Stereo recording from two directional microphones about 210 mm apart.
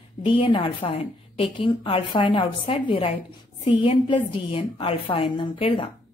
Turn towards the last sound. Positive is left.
turn(degrees=25)  # may be behind; listen again after turning